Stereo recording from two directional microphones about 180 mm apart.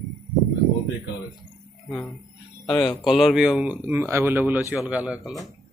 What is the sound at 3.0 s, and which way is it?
Speech, centre (ahead or behind).